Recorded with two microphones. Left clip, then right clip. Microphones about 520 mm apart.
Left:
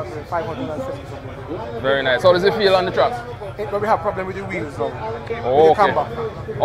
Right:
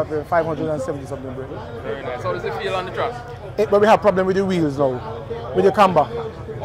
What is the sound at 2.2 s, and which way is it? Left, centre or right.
Speech, left.